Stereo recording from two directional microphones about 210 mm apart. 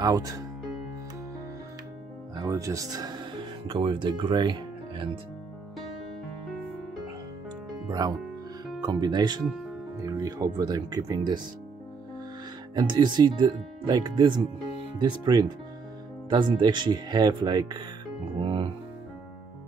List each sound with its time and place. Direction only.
0.0 s speech: 15° right (ahead or behind)
2.4 s speech: 15° right (ahead or behind)
8.8 s speech: 20° right (ahead or behind)
12.7 s speech: 20° right (ahead or behind)
18.4 s music: 25° right (ahead or behind)